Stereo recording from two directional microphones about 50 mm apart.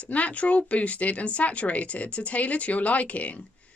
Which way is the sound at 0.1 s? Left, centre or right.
Left.